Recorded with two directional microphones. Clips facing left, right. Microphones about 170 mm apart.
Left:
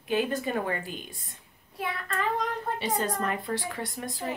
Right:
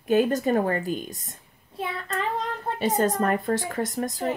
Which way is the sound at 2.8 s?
45° right (ahead or behind).